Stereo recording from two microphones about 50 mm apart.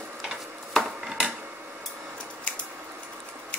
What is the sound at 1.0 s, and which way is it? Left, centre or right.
Dishes, centre.